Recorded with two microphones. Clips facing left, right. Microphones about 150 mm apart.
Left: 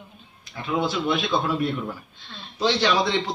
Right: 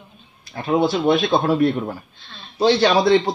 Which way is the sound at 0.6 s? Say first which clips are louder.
Right 6 dB; 55° right (ahead or behind).